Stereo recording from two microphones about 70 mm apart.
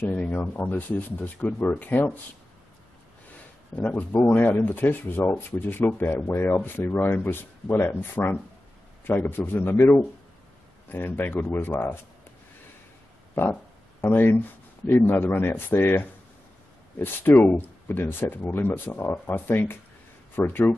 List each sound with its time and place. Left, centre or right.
0.1 s speech: centre
3.7 s speech: left
13.3 s speech: left